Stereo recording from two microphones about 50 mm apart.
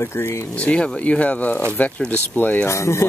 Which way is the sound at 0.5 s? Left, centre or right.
Left.